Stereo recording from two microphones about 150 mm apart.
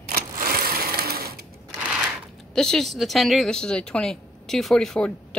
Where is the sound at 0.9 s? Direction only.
90° right.